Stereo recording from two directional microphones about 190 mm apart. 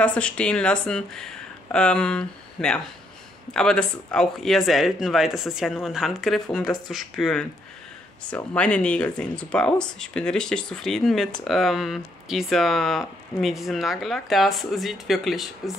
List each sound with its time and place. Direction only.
0.0 s speech: 5° left (ahead or behind)